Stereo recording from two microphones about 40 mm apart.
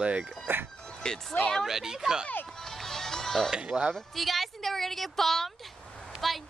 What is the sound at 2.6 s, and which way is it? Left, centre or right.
Music, centre.